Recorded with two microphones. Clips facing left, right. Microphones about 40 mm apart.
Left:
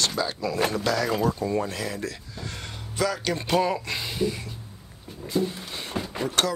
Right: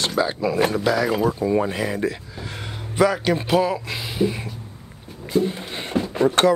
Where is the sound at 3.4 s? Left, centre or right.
Centre.